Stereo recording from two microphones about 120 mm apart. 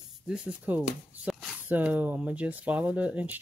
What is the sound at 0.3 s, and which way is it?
Speech, 15° right (ahead or behind).